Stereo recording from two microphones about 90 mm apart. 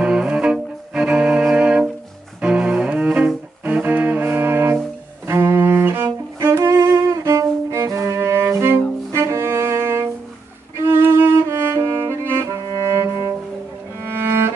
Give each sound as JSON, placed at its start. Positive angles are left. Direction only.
{"t": 0.0, "sound": "cello", "side_deg": -10}
{"t": 3.6, "sound": "music", "side_deg": -15}
{"t": 5.2, "sound": "cello", "side_deg": -25}
{"t": 7.2, "sound": "cello", "side_deg": -35}
{"t": 10.9, "sound": "music", "side_deg": -25}
{"t": 14.1, "sound": "cello", "side_deg": -25}